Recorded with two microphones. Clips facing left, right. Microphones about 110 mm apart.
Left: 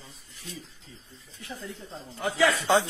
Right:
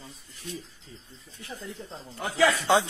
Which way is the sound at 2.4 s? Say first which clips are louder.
Right 1 dB; 15° right (ahead or behind).